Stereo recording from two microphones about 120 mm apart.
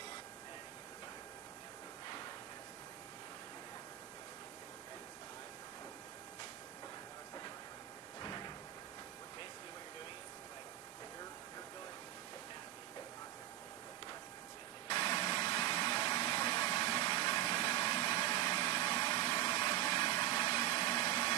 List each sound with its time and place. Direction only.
8.2 s cupboard open or close: 40° left (ahead or behind)
14.9 s vehicle: 45° left (ahead or behind)
18.9 s a sound: 50° left (ahead or behind)